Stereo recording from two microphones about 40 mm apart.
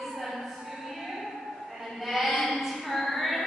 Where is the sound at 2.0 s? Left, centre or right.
Centre.